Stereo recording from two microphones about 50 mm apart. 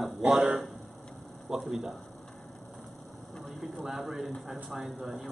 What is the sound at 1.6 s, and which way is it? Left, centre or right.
Speech, centre.